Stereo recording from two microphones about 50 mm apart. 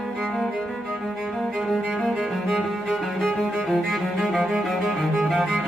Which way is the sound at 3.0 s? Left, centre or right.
Centre.